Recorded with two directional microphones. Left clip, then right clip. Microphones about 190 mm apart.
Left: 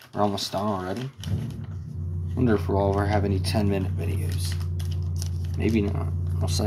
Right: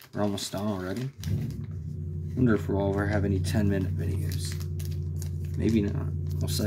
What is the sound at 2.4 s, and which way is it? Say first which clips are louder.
Speech: left 3 dB; 35° right (ahead or behind).